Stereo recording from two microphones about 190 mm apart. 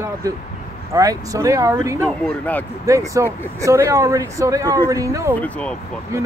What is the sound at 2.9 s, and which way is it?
Speech, 15° right (ahead or behind).